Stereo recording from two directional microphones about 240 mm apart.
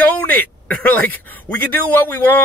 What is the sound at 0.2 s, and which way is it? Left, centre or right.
Speech, centre.